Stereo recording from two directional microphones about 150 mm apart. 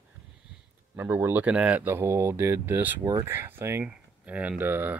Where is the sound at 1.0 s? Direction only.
15° right (ahead or behind).